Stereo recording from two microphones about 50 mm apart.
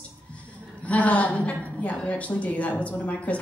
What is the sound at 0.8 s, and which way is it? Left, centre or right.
A woman's voice, left.